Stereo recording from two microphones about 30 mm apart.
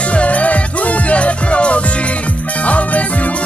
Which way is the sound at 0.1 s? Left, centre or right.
Left.